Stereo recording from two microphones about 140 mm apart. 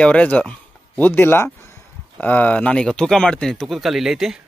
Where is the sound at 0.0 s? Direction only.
10° left (ahead or behind).